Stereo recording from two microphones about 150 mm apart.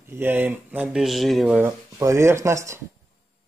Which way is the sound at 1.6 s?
20° right (ahead or behind).